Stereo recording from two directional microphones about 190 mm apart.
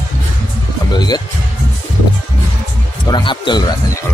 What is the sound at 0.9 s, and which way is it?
Speech, 20° left (ahead or behind).